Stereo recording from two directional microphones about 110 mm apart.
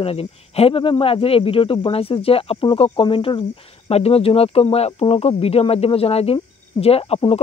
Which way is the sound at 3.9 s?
70° left (ahead or behind).